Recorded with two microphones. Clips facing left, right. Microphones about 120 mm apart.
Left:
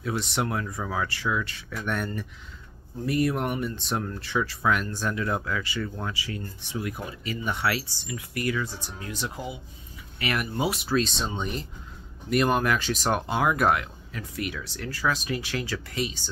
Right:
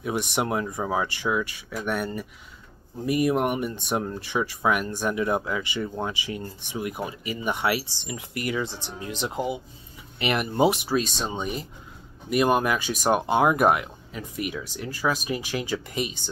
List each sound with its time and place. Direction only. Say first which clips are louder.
0.0 s speech: right 2 dB; 15° right (ahead or behind)